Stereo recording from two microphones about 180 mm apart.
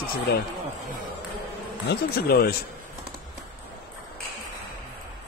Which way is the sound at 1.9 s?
60° left (ahead or behind).